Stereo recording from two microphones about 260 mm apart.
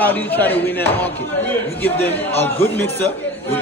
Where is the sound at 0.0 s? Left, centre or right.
Centre.